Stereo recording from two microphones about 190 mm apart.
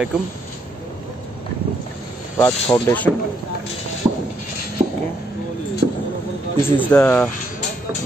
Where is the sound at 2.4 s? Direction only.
15° left (ahead or behind).